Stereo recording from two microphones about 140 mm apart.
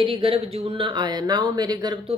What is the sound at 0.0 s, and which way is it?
Speech, 40° right (ahead or behind).